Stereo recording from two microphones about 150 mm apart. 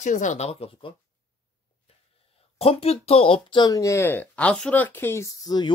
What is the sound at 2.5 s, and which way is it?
Speech, 40° left (ahead or behind).